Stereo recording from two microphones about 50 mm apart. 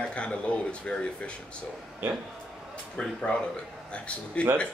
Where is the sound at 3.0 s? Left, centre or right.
Centre.